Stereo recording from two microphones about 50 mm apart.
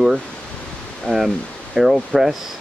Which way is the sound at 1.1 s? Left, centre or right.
Centre.